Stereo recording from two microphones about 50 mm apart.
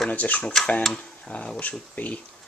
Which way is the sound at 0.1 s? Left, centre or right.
Left.